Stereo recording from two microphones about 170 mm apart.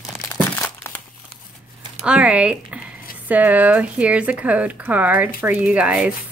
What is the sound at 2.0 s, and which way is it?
Speech, 5° right (ahead or behind).